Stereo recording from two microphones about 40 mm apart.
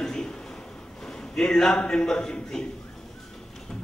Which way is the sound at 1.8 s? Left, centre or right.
Left.